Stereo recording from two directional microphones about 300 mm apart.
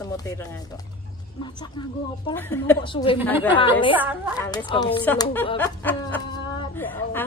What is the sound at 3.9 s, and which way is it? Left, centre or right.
Speech, centre.